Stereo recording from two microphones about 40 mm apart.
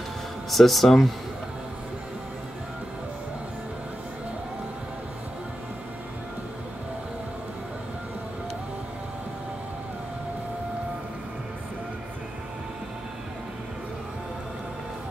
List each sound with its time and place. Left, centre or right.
0.5 s speech: centre